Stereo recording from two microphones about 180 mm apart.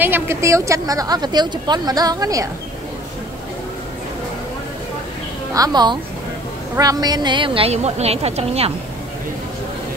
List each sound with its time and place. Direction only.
0.0 s a woman's voice: 10° right (ahead or behind)
5.5 s a woman's voice: 20° right (ahead or behind)